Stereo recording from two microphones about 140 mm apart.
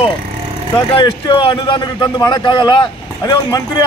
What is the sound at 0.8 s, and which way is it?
A man's voice, 35° left (ahead or behind).